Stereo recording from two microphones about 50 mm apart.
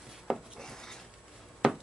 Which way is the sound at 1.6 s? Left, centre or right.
Right.